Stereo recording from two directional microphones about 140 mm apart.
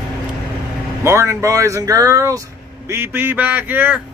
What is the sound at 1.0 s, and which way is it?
Speech, 20° right (ahead or behind).